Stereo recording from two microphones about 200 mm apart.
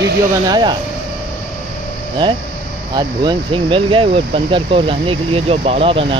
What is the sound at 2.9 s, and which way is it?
Speech, 25° right (ahead or behind).